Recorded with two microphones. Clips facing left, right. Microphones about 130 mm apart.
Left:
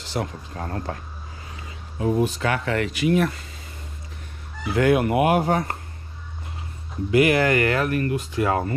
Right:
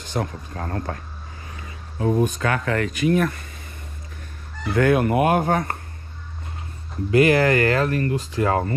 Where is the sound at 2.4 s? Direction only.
25° left (ahead or behind).